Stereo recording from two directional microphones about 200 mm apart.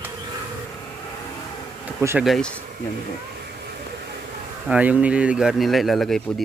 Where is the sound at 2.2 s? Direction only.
Centre (ahead or behind).